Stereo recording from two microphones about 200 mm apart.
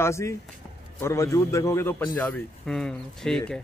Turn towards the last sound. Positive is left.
turn(degrees=5)  # may be behind; listen again after turning